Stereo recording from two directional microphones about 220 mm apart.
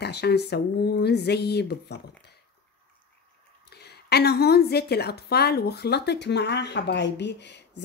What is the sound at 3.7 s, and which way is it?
A woman's voice, 45° left (ahead or behind).